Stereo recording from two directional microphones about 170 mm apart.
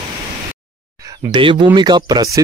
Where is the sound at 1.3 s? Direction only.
30° right (ahead or behind).